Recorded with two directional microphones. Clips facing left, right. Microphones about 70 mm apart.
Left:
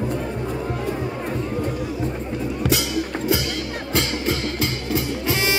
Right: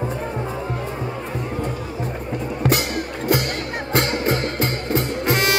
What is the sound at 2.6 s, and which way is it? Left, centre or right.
Music, right.